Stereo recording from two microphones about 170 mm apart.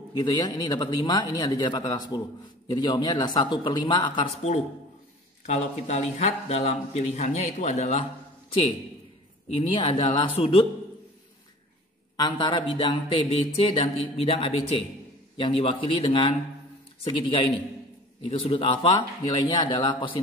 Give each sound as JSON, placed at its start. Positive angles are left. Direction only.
{"t": 0.1, "sound": "speech", "side_deg": 25}
{"t": 5.4, "sound": "a man's voice", "side_deg": 40}
{"t": 9.6, "sound": "a man's voice", "side_deg": 30}
{"t": 12.2, "sound": "a man's voice", "side_deg": 25}